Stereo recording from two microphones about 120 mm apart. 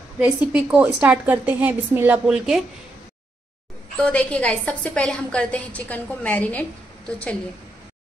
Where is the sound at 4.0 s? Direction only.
10° left (ahead or behind).